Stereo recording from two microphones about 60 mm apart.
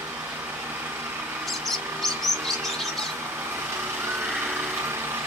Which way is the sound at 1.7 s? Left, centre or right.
Centre.